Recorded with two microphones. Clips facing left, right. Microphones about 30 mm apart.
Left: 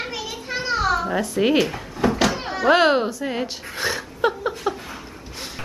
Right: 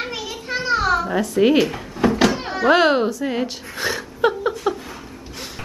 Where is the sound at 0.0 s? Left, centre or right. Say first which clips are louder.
Right 2 dB; centre.